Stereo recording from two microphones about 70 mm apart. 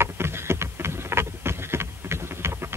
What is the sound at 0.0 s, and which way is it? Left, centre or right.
Boat, right.